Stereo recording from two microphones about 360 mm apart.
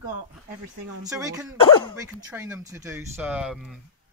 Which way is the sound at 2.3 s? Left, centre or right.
Centre.